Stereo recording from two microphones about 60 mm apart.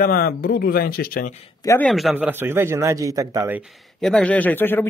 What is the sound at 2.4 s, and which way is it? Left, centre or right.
Speech, right.